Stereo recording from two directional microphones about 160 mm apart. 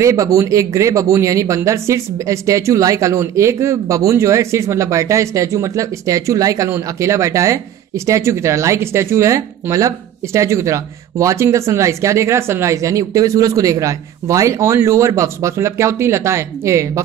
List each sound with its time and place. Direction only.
0.0 s speech: 20° right (ahead or behind)